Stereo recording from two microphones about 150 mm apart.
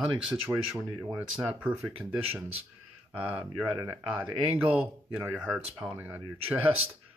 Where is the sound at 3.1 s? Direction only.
10° right (ahead or behind).